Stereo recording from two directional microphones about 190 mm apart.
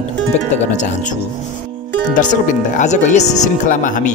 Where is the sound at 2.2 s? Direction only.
40° left (ahead or behind).